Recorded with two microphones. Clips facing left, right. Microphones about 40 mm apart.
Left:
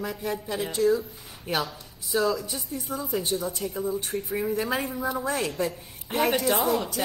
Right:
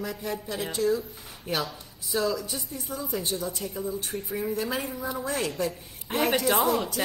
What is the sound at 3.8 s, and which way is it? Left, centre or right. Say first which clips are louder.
Speech: left 4 dB; left.